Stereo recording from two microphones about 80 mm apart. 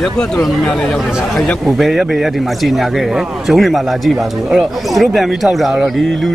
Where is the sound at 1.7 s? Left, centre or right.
Centre.